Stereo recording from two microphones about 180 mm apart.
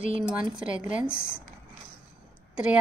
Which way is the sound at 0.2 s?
5° right (ahead or behind).